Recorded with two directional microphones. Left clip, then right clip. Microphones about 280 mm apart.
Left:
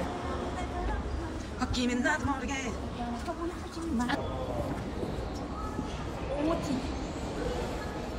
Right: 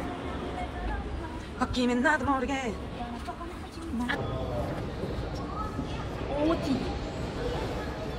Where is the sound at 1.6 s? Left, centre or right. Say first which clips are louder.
Right 4 dB; centre.